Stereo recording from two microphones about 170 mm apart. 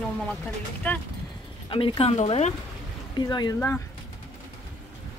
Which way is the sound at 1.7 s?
35° left (ahead or behind).